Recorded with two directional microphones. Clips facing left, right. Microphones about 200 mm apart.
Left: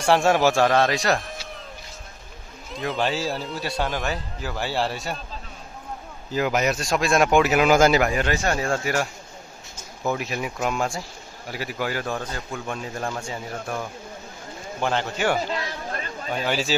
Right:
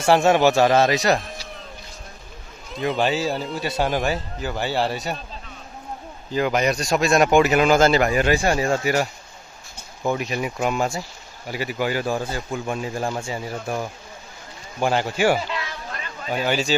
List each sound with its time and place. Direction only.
0.0 s speech: centre (ahead or behind)
2.7 s speech: centre (ahead or behind)
3.7 s speech: 15° right (ahead or behind)
4.4 s speech: centre (ahead or behind)
6.3 s speech: 5° left (ahead or behind)
8.1 s speech: 10° right (ahead or behind)
15.4 s a sound: 40° left (ahead or behind)
16.3 s speech: 5° right (ahead or behind)